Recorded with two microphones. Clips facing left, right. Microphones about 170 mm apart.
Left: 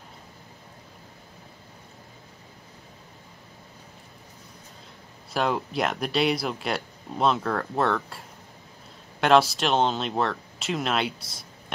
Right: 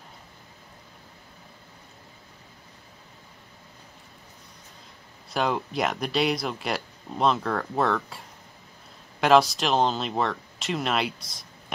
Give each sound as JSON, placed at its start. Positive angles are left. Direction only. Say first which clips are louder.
{"t": 5.3, "sound": "speech", "louder": "even", "side_deg": 0}